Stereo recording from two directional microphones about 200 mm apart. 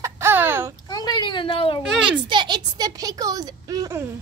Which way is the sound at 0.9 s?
20° left (ahead or behind).